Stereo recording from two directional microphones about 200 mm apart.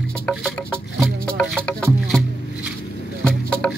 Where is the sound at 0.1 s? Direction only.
5° left (ahead or behind).